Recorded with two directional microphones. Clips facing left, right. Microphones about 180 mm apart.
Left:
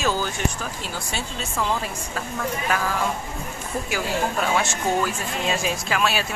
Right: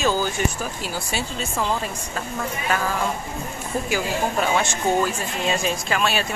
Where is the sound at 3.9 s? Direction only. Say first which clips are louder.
Right 1 dB; centre (ahead or behind).